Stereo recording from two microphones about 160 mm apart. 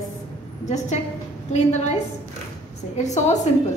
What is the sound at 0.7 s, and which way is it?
A woman's voice, 45° left (ahead or behind).